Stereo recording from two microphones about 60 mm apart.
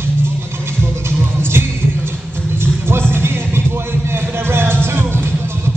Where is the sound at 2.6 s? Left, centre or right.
Right.